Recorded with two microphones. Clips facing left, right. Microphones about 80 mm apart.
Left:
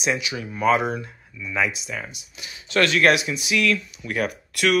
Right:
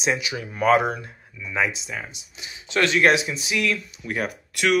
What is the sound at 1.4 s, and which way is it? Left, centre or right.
Speech, right.